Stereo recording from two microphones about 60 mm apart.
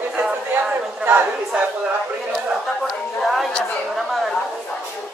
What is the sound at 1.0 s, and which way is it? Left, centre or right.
Speech, right.